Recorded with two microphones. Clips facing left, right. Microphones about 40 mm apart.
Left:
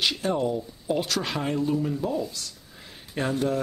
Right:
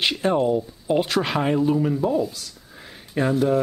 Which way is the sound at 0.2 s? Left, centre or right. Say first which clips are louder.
Right 6 dB; right.